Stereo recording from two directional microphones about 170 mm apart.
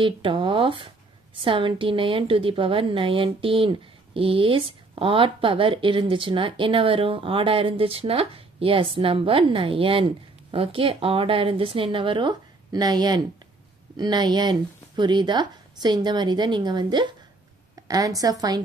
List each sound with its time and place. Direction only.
0.0 s speech: 30° right (ahead or behind)